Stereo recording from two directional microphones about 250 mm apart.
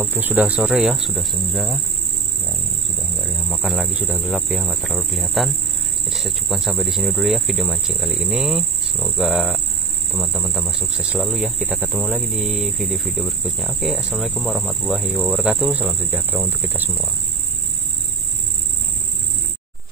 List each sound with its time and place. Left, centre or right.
0.0 s speech: centre
3.4 s speech: centre